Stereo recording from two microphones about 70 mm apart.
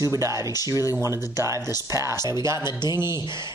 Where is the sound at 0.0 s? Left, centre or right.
Right.